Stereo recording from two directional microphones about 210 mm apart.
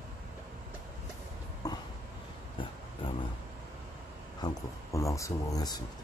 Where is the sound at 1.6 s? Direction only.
20° left (ahead or behind).